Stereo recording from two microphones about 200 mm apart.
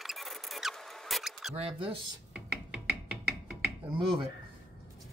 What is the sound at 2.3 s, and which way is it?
Music, 5° right (ahead or behind).